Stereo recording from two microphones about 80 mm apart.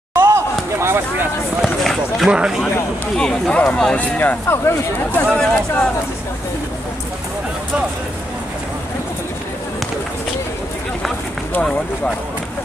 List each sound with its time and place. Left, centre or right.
0.1 s a sound: right
1.6 s speech: centre
3.2 s speech: centre
4.2 s speech: left
5.3 s speech: centre